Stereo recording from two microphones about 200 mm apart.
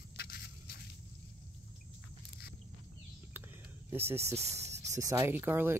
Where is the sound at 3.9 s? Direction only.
10° right (ahead or behind).